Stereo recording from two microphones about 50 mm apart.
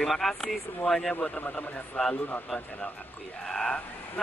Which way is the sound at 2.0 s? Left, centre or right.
Centre.